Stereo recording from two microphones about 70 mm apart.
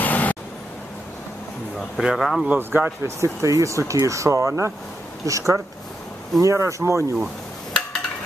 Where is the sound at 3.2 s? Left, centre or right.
Right.